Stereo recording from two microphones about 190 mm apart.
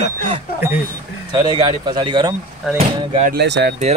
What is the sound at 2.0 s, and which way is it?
Speech, 25° right (ahead or behind).